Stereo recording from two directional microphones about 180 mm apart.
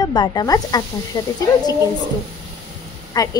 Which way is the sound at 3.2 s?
20° left (ahead or behind).